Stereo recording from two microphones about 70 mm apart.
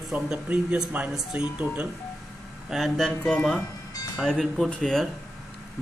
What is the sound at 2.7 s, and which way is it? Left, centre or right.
Speech, centre.